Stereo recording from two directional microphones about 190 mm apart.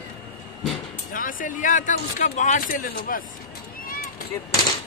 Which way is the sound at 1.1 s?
45° left (ahead or behind).